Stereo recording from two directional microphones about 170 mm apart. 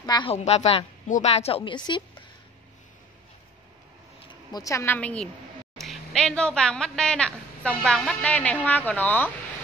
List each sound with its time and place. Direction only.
0.0 s a woman's voice: 25° left (ahead or behind)
4.5 s a woman's voice: 20° left (ahead or behind)